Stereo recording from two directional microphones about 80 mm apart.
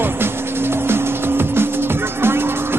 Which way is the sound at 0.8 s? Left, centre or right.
Right.